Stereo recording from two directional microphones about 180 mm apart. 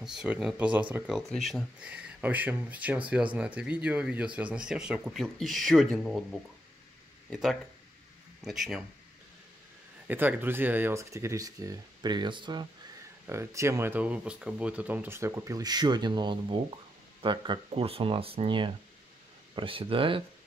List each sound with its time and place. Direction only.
0.0 s speech: 5° right (ahead or behind)
7.2 s speech: centre (ahead or behind)
10.0 s speech: 10° right (ahead or behind)
13.3 s speech: 15° right (ahead or behind)